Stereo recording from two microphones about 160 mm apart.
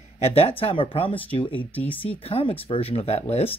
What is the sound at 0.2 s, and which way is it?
Speech, 40° left (ahead or behind).